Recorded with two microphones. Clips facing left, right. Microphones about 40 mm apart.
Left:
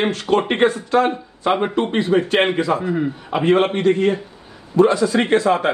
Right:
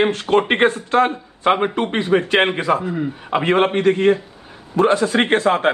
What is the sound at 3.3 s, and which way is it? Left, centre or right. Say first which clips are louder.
A man's voice: even; right.